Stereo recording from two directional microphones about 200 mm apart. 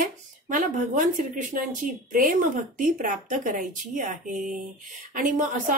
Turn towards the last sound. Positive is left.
turn(degrees=-40)  # may be behind; listen again after turning